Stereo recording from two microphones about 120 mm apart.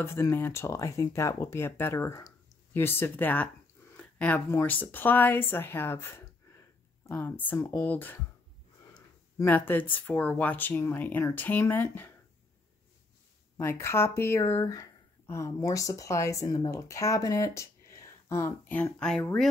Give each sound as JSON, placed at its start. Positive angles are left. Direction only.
{"t": 0.0, "sound": "speech", "side_deg": 20}
{"t": 3.9, "sound": "a sound", "side_deg": 10}
{"t": 4.5, "sound": "speech", "side_deg": 20}
{"t": 9.4, "sound": "speech", "side_deg": 15}
{"t": 13.6, "sound": "speech", "side_deg": 20}